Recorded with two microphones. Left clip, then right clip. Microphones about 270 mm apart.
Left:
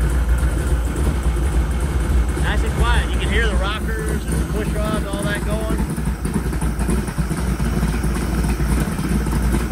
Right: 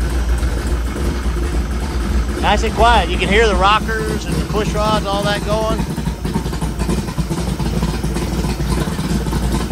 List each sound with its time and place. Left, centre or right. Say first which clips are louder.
2.4 s speech: right 12 dB; right